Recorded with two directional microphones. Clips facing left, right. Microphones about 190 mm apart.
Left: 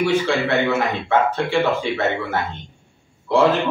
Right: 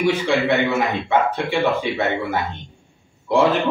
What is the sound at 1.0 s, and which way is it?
Speech, 15° right (ahead or behind).